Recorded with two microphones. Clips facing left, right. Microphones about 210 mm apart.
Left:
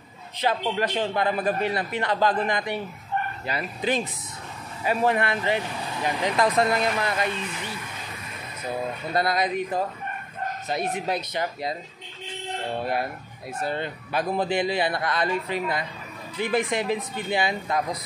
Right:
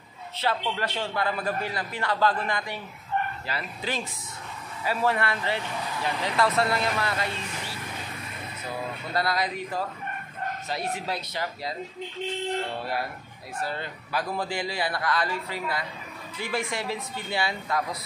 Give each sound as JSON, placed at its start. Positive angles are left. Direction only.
{"t": 0.4, "sound": "a man's voice", "side_deg": 15}
{"t": 9.1, "sound": "a man's voice", "side_deg": 20}
{"t": 13.6, "sound": "a man's voice", "side_deg": 20}